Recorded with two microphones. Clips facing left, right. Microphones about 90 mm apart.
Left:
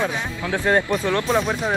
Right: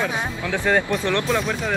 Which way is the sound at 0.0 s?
20° left (ahead or behind).